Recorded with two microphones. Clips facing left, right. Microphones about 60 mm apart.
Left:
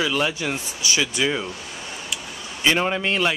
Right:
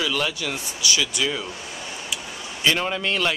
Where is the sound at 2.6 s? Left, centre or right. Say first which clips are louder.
Left 2 dB; centre.